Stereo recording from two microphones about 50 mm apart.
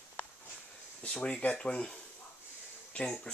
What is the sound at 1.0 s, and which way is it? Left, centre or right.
Speech, centre.